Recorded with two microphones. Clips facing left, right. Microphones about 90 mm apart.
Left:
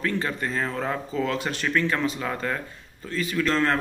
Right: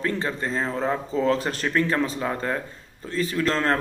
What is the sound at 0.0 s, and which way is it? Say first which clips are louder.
Speech: right 1 dB; 30° right (ahead or behind).